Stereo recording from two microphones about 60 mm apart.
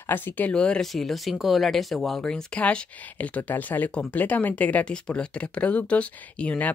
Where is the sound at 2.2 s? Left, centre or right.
Centre.